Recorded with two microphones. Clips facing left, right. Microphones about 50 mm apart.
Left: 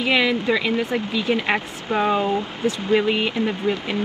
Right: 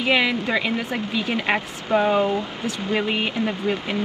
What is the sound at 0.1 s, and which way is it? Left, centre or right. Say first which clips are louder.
Speech: left 1 dB; right.